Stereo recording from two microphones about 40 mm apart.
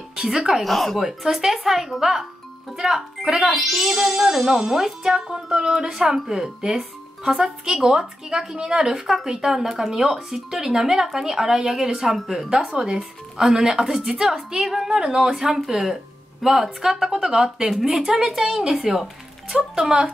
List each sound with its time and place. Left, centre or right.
0.1 s speech: centre
0.6 s speech: centre
1.0 s speech: centre
3.3 s speech: centre
3.7 s a woman's voice: centre
12.9 s speech: centre